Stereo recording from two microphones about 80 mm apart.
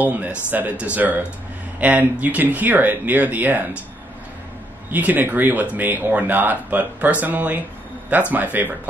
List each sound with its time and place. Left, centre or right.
0.0 s speech: right
4.9 s speech: right